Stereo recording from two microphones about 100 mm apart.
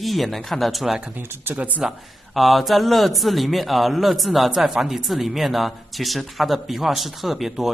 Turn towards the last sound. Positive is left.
turn(degrees=0)  # may be behind; listen again after turning